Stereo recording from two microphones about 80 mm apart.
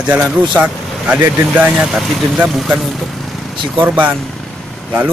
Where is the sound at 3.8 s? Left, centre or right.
Right.